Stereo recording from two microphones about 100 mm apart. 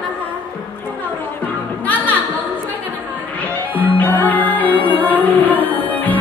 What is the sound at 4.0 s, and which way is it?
Music, 15° left (ahead or behind).